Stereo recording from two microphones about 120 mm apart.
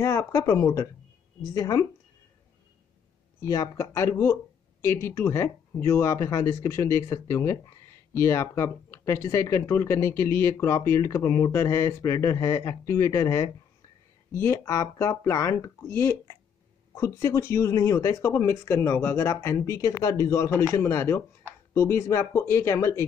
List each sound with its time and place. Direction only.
0.0 s speech: 20° left (ahead or behind)
3.3 s speech: 30° left (ahead or behind)